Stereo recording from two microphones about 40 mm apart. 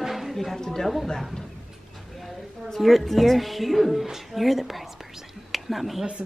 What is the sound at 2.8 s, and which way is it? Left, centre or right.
A woman's voice, centre.